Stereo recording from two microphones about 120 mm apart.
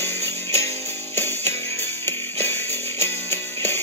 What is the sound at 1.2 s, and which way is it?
Music, 20° left (ahead or behind).